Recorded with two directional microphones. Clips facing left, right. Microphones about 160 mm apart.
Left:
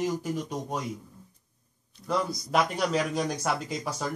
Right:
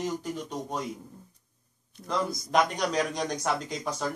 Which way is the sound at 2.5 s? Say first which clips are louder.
Even; 5° left (ahead or behind).